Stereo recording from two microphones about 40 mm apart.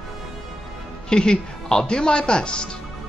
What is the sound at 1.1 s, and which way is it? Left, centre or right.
Speech, left.